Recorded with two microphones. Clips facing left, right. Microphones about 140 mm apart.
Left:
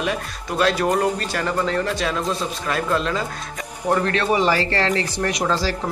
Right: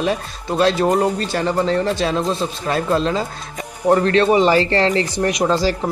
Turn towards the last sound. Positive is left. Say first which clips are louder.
# right 5 dB
turn(degrees=-15)  # may be behind; listen again after turning